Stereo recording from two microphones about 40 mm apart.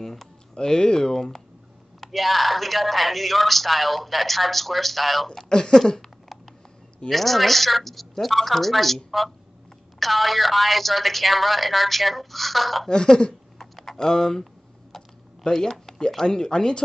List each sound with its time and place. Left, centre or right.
0.0 s speech: centre
0.6 s speech: left
2.0 s speech: centre
5.4 s speech: centre
5.9 s a sound: centre
7.1 s speech: centre
12.8 s speech: centre
13.6 s typing: centre
14.0 s speech: centre
14.4 s computer keyboard: centre
15.5 s speech: centre